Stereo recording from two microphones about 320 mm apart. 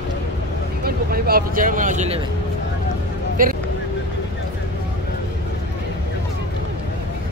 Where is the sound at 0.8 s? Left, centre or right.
Right.